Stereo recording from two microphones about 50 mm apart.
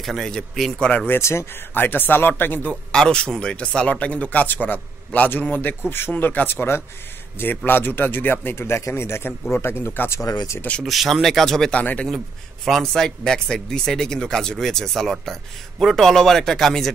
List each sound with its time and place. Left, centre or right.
0.0 s speech: centre
1.2 s speech: left
1.7 s a man's voice: left
2.7 s a man's voice: centre; by 5.8 s left
5.9 s a man's voice: left
8.5 s speech: left
10.8 s speech: centre
11.7 s speech: left
12.8 s speech: centre